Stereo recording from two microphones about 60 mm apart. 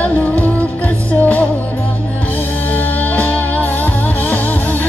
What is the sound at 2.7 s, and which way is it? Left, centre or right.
Music, left.